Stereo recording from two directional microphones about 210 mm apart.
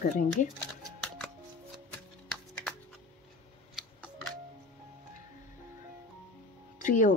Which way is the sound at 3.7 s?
Centre (ahead or behind).